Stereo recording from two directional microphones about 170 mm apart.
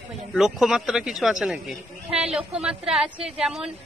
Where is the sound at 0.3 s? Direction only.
Centre (ahead or behind).